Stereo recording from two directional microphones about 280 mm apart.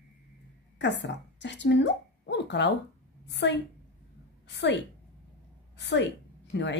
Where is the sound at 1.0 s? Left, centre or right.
Left.